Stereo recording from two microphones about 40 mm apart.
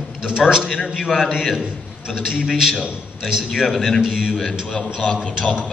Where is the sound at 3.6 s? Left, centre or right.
Centre.